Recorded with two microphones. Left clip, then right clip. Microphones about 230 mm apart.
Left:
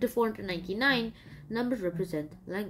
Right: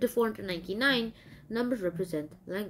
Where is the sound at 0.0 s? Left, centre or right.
Centre.